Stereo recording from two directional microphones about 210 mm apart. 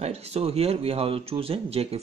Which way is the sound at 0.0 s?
30° right (ahead or behind).